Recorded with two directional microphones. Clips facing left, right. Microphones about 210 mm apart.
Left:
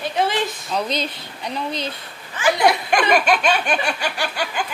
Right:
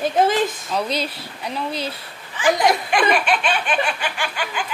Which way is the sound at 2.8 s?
45° left (ahead or behind).